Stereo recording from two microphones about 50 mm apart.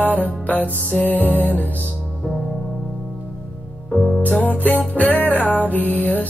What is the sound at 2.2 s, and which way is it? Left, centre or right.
Music, centre.